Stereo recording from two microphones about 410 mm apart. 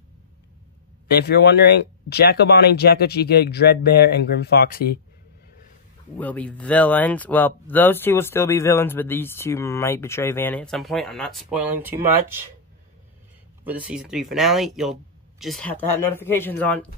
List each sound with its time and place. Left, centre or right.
1.0 s speech: left
6.1 s speech: centre
13.7 s speech: centre